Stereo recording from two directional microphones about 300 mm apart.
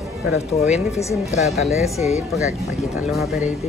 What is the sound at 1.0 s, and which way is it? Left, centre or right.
Speech, centre.